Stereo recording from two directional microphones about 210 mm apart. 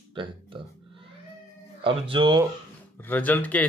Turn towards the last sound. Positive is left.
turn(degrees=5)  # may be behind; listen again after turning